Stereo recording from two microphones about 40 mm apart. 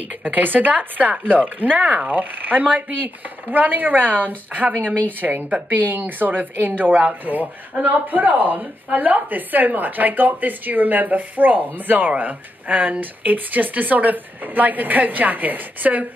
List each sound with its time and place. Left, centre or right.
0.2 s speech: right
5.2 s speech: right
5.8 s speech: right